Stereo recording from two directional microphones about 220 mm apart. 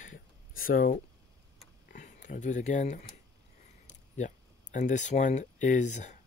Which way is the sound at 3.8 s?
35° left (ahead or behind).